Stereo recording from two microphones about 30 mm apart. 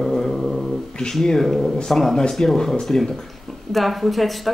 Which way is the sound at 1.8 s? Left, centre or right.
Centre.